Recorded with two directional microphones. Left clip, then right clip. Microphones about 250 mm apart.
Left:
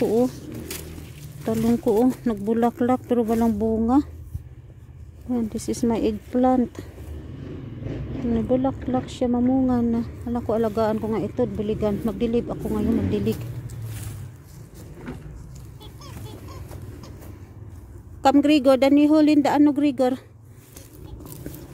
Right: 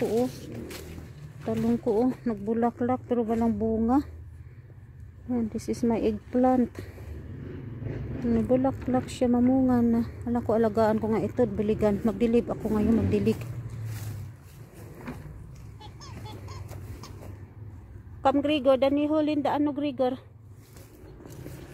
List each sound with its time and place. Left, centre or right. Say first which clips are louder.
1.4 s speech: left 5 dB; centre
3.8 s speech: left 5 dB; centre
5.3 s speech: left 4 dB; centre
8.4 s speech: left 2 dB; centre
15.8 s a sound: left 2 dB; right
18.2 s speech: left 6 dB; left